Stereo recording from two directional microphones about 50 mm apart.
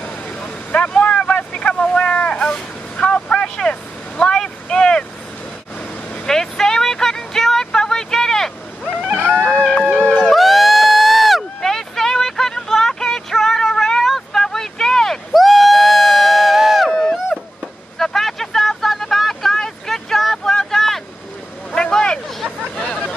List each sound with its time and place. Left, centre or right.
0.0 s vehicle: left
4.2 s boat: centre
6.2 s vehicle: centre
9.2 s music: right
10.3 s a sound: centre
14.1 s vehicle: centre
15.3 s a sound: centre
17.9 s vehicle: centre
22.8 s hubbub: centre